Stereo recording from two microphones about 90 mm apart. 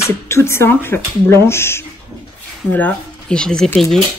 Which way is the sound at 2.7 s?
15° left (ahead or behind).